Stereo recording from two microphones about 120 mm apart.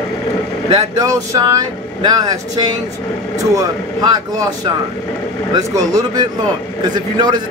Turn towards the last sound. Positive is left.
turn(degrees=-35)  # may be behind; listen again after turning